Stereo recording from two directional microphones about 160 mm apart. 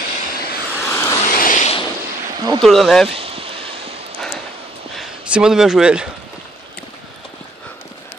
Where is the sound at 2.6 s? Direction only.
Centre (ahead or behind).